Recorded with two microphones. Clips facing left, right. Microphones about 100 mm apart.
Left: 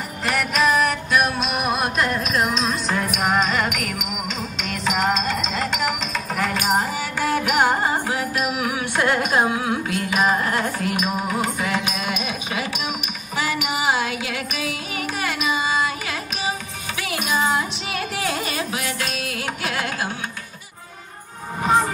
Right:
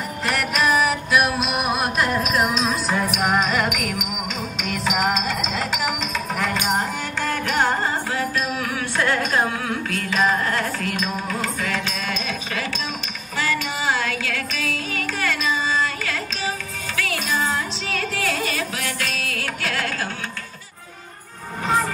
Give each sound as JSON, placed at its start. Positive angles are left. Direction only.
{"t": 0.2, "sound": "music", "side_deg": 0}